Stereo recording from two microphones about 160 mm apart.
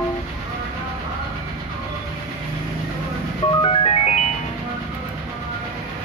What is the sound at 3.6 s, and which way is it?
Music, 35° left (ahead or behind).